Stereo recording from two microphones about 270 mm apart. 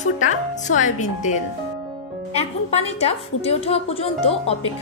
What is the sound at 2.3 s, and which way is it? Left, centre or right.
Speech, left.